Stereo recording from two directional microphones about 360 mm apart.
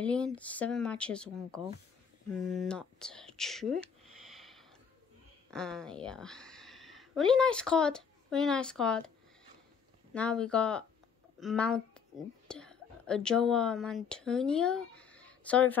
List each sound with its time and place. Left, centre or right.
0.0 s speech: centre
4.3 s a sound: centre
5.5 s a woman's voice: centre
10.1 s a woman's voice: centre